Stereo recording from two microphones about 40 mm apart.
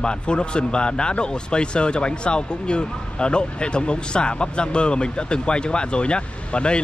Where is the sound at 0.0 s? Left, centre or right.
Left.